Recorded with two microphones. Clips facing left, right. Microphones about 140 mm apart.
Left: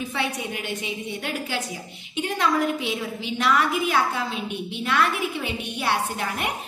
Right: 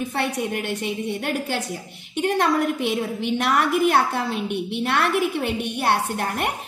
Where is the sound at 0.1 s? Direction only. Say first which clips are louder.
Right 4 dB; 55° right (ahead or behind).